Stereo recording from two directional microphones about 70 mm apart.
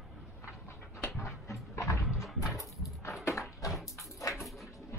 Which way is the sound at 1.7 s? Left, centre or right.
Left.